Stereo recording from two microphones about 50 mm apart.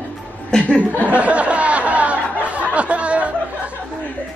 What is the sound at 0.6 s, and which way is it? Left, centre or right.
Speech, left.